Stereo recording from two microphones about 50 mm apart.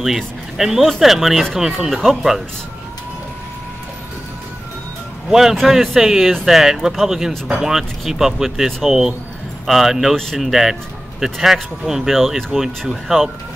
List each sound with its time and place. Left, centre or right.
0.0 s speech: centre
5.3 s speech: centre
5.6 s speech: centre